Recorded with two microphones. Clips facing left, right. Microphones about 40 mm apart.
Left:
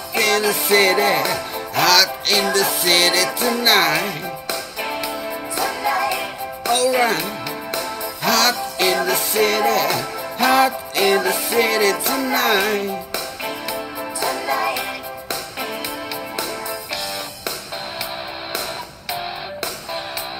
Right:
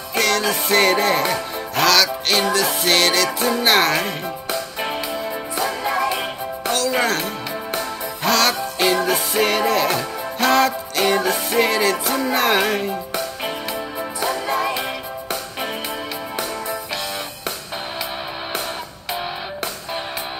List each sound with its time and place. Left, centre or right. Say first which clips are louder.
0.1 s music: left 1 dB; centre
5.7 s music: left 2 dB; right
7.0 s speech: left 2 dB; centre
8.2 s music: even; centre
10.4 s music: left 1 dB; centre
13.7 s music: even; right